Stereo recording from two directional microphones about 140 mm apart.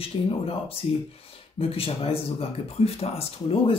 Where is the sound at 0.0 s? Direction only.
45° left (ahead or behind).